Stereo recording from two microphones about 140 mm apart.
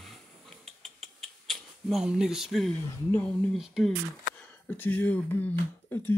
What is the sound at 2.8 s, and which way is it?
Speech, 15° left (ahead or behind).